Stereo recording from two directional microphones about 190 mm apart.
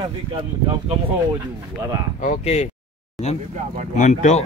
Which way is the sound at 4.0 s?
40° left (ahead or behind).